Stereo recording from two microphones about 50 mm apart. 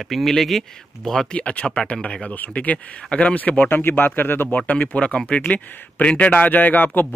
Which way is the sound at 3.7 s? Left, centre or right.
Left.